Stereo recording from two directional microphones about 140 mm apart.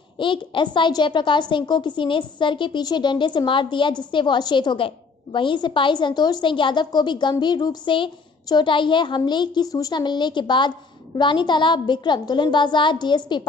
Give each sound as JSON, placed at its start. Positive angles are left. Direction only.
{"t": 0.2, "sound": "a woman's voice", "side_deg": 35}